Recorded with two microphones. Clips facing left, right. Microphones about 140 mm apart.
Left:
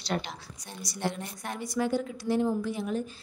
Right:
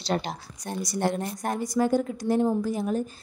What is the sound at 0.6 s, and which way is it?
Speech, 50° right (ahead or behind).